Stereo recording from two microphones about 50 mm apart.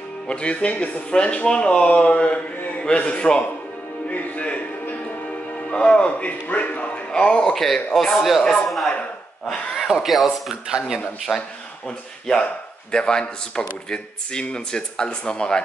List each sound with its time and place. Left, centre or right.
0.3 s speech: left
5.7 s speech: left
7.1 s speech: centre
7.5 s speech: centre
11.3 s speech: centre
12.9 s speech: centre